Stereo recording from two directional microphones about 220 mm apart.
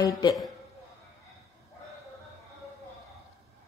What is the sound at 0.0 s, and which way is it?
Speech, 15° left (ahead or behind).